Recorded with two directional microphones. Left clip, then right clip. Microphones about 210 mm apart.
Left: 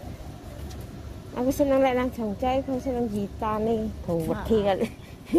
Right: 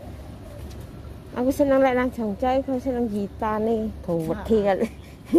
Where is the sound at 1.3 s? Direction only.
20° right (ahead or behind).